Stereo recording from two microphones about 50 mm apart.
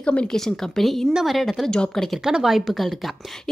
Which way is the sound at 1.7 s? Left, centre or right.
Centre.